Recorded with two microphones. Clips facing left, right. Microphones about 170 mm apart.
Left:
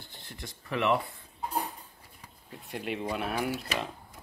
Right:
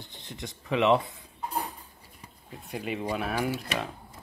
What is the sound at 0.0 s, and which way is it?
Speech, 20° right (ahead or behind).